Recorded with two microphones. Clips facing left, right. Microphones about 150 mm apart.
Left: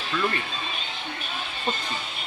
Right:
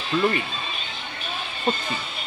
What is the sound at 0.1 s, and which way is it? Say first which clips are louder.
Speech: right 5 dB; 30° right (ahead or behind).